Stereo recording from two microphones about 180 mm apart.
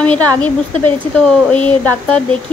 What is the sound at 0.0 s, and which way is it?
Speech, 10° left (ahead or behind).